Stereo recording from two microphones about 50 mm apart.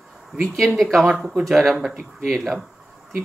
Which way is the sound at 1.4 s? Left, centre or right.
Centre.